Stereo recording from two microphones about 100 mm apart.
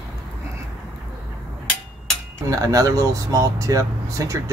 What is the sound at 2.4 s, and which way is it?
Speech, 35° right (ahead or behind).